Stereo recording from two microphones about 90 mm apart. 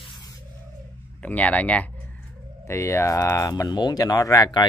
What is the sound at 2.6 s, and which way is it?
Speech, 30° left (ahead or behind).